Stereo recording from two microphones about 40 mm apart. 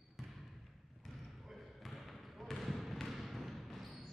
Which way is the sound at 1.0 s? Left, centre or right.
Centre.